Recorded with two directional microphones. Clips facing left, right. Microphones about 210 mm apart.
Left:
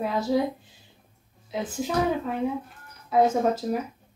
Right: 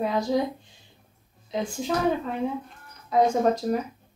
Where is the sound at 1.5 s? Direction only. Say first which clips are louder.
Right 1 dB; 5° left (ahead or behind).